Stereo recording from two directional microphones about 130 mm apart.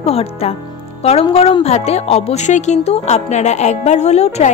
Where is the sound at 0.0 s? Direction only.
50° left (ahead or behind).